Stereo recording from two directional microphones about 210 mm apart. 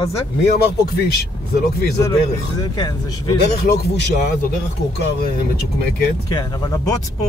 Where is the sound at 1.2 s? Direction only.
50° left (ahead or behind).